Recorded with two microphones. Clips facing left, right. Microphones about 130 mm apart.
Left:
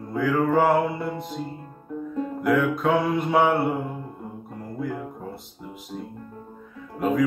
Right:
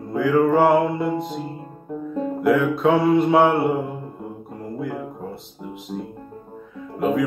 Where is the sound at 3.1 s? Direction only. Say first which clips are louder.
Right 5 dB; 20° right (ahead or behind).